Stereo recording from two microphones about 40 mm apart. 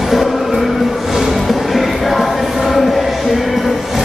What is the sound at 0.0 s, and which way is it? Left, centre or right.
Music, centre.